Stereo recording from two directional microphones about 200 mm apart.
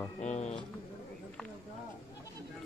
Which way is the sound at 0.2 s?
35° left (ahead or behind).